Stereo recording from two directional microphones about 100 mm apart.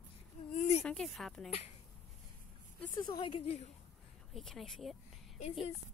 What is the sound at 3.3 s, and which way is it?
Speech, 75° left (ahead or behind).